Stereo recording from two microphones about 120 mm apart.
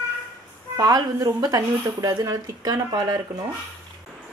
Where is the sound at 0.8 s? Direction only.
30° right (ahead or behind).